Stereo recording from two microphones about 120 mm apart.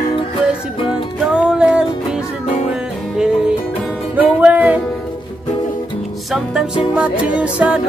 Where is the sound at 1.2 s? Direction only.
5° right (ahead or behind).